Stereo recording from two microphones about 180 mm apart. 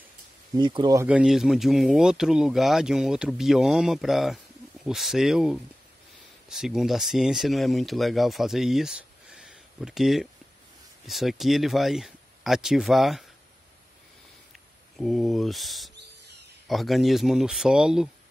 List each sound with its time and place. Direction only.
0.6 s speech: 25° right (ahead or behind)
1.0 s speech: 5° right (ahead or behind)
15.0 s speech: centre (ahead or behind)